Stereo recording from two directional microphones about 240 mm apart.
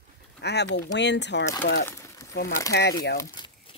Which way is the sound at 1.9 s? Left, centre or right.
Centre.